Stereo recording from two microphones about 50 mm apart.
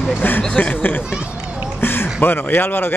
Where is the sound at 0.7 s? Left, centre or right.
Left.